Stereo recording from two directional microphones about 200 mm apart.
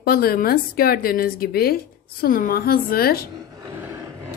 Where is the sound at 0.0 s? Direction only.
50° left (ahead or behind).